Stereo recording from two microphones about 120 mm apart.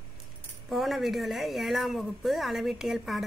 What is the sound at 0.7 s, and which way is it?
Speech, centre (ahead or behind).